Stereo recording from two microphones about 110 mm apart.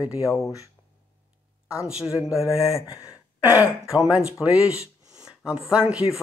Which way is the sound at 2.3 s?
30° left (ahead or behind).